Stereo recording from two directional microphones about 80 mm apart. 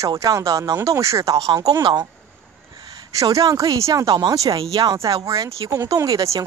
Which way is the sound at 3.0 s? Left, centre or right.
Right.